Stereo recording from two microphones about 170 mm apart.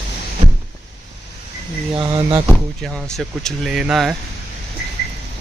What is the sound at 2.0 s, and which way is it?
Speech, 25° right (ahead or behind).